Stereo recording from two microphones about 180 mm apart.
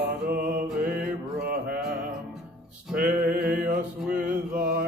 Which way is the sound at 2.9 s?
55° right (ahead or behind).